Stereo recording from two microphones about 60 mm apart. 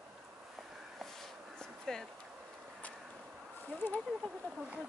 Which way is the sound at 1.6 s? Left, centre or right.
Centre.